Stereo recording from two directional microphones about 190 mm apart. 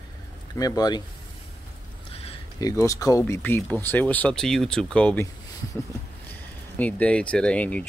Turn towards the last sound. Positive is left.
turn(degrees=5)  # may be behind; listen again after turning